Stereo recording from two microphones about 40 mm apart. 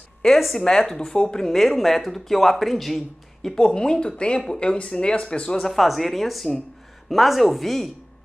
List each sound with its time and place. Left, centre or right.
0.4 s speech: centre
0.7 s speech: centre
3.4 s speech: centre
5.6 s speech: centre